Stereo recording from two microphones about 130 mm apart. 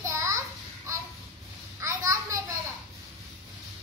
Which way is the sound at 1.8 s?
25° right (ahead or behind).